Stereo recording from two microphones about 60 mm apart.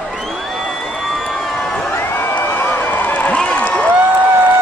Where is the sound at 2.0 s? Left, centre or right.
Left.